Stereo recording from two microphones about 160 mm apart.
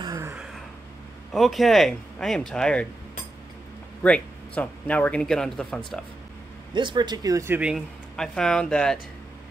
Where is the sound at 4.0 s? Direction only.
10° left (ahead or behind).